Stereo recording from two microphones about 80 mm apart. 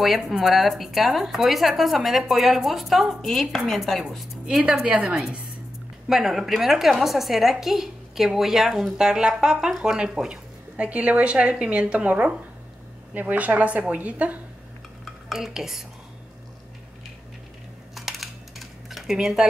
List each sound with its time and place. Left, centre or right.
0.0 s a woman's voice: centre
15.2 s speech: centre
17.9 s dishes: centre